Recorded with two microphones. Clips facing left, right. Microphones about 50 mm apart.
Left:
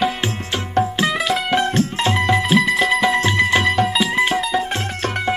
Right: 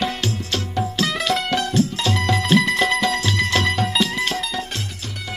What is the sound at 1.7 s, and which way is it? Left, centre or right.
Music, left.